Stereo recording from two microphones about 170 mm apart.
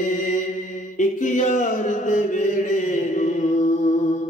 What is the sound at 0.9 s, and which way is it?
Music, 50° left (ahead or behind).